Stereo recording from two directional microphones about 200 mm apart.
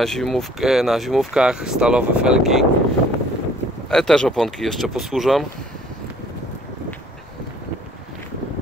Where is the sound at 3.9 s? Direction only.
5° left (ahead or behind).